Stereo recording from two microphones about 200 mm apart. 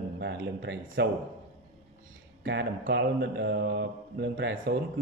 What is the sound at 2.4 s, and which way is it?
Speech, 60° right (ahead or behind).